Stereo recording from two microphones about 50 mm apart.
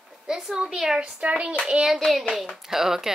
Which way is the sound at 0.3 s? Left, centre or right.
Centre.